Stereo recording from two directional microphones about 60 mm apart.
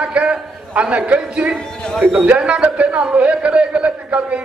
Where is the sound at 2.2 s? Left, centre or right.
Centre.